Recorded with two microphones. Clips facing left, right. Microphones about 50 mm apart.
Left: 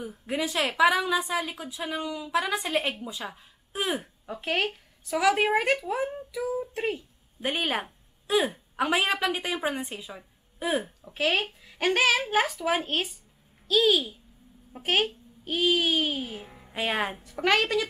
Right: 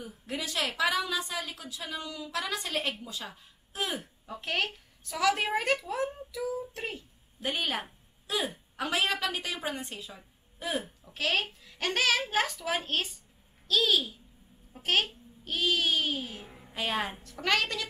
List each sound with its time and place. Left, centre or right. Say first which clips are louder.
0.0 s a woman's voice: left 5 dB; left
0.4 s a woman's voice: left 7 dB; centre